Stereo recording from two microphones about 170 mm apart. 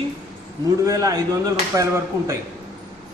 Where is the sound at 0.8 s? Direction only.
20° right (ahead or behind).